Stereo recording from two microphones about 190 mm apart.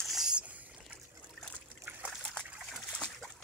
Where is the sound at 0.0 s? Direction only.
Centre (ahead or behind).